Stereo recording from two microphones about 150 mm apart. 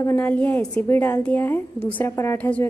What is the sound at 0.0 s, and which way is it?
A woman's voice, 15° left (ahead or behind).